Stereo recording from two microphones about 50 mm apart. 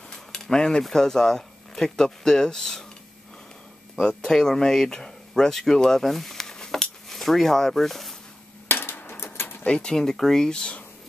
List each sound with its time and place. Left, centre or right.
0.1 s speech: centre
4.0 s speech: centre
7.1 s speech: centre
8.6 s typewriter: left
9.2 s a sound: left
9.7 s speech: centre